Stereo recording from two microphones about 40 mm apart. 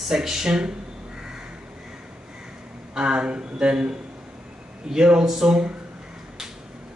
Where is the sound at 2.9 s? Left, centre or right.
Right.